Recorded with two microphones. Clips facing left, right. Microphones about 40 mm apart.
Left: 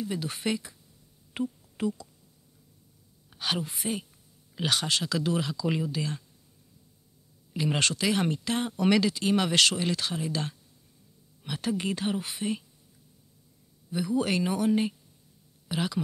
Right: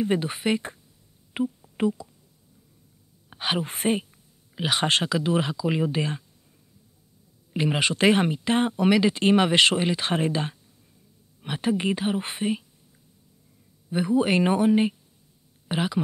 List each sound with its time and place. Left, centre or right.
0.0 s speech: right
0.3 s speech: right
1.8 s speech: right
3.3 s a woman's voice: right
3.6 s a woman's voice: right
5.1 s speech: right
7.5 s speech: right
9.1 s speech: right
9.4 s speech: right
12.2 s speech: right
13.8 s speech: right
14.4 s speech: right